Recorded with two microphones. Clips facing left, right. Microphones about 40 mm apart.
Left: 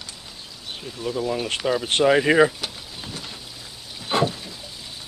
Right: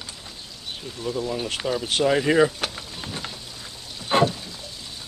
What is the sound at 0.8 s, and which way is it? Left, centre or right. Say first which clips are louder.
Speech: left 2 dB; centre.